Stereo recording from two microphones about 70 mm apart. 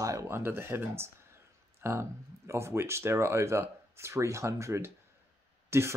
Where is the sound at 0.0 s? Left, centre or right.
Right.